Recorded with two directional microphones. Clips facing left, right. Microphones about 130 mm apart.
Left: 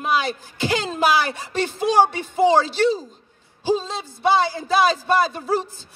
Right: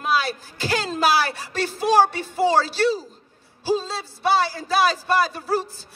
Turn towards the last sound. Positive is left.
turn(degrees=20)  # may be behind; listen again after turning